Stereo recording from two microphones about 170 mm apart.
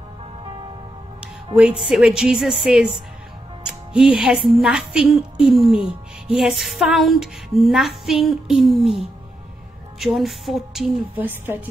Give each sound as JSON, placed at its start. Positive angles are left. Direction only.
{"t": 0.5, "sound": "music", "side_deg": -30}
{"t": 1.2, "sound": "a woman's voice", "side_deg": -5}